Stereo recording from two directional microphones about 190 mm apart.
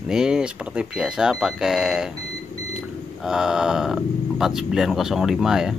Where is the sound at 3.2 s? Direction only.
5° right (ahead or behind).